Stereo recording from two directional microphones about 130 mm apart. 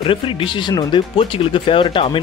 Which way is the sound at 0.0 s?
40° left (ahead or behind).